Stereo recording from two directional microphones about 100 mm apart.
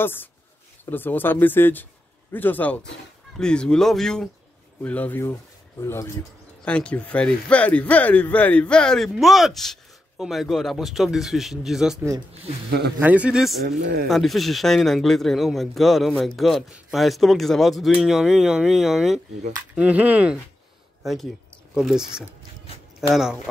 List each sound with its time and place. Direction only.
0.0 s speech: 20° left (ahead or behind)
5.8 s speech: 30° left (ahead or behind)
6.6 s speech: 10° left (ahead or behind); by 12.0 s 5° right (ahead or behind)
13.0 s speech: 15° right (ahead or behind)
14.0 s speech: centre (ahead or behind)
21.0 s speech: centre (ahead or behind)